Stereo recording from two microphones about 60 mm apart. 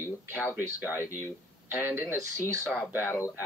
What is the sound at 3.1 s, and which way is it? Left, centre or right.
Speech, left.